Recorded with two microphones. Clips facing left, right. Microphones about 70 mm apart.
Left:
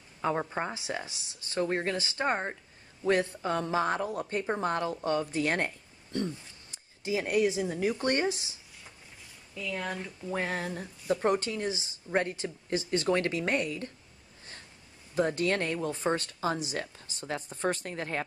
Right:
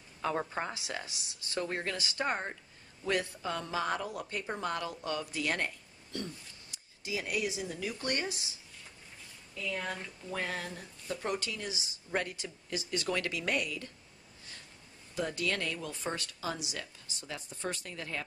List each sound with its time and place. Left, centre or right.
0.2 s speech: centre
9.6 s speech: centre
10.3 s speech: left
15.1 s speech: left